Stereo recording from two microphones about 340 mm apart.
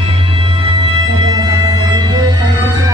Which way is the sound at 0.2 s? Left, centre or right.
Centre.